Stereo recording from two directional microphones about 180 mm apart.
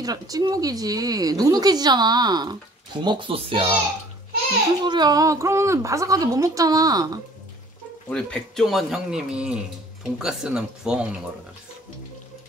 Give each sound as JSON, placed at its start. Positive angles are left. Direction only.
{"t": 0.0, "sound": "speech", "side_deg": -20}
{"t": 4.8, "sound": "speech", "side_deg": -25}
{"t": 8.1, "sound": "speech", "side_deg": 5}